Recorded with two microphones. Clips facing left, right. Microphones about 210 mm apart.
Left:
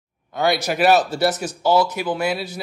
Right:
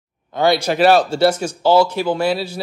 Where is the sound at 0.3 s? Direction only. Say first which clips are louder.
Right 4 dB; 25° right (ahead or behind).